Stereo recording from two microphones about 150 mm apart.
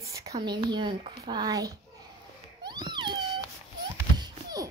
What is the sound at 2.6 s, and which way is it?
Cat, 30° right (ahead or behind).